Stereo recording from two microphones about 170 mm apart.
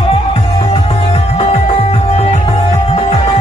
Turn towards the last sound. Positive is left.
turn(degrees=40)  # may be behind; listen again after turning